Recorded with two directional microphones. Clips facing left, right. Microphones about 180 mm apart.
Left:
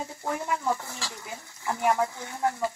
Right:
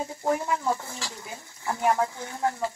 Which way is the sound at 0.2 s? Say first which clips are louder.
Right 4 dB; 20° right (ahead or behind).